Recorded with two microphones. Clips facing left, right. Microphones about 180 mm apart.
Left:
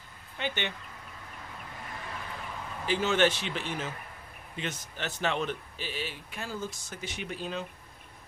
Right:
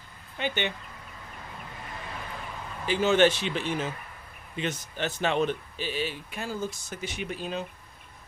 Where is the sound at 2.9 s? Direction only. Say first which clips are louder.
Right 4 dB; 15° right (ahead or behind).